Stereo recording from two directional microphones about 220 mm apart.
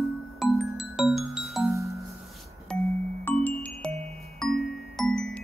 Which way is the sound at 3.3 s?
10° left (ahead or behind).